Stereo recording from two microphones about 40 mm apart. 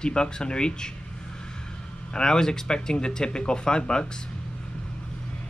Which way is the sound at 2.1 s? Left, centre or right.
Centre.